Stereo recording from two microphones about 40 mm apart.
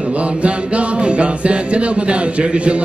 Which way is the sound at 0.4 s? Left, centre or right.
Right.